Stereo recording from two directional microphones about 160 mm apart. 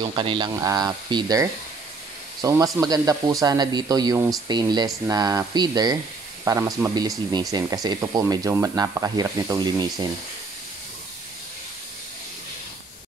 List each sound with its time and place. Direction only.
0.1 s speech: 30° right (ahead or behind)